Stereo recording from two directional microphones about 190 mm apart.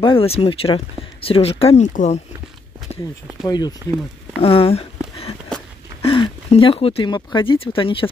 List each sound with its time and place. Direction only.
0.0 s speech: 30° left (ahead or behind)
3.4 s speech: 20° left (ahead or behind)